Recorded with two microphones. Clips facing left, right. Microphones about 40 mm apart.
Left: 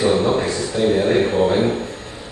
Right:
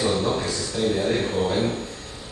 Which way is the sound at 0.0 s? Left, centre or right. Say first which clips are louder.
Left 6 dB; left.